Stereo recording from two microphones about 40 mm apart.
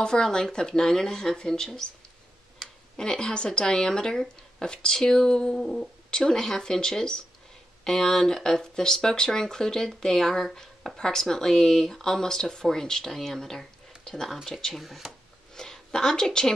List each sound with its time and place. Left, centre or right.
0.0 s speech: centre
3.0 s speech: centre
6.0 s speech: centre
14.8 s speech: centre
15.5 s a woman's voice: centre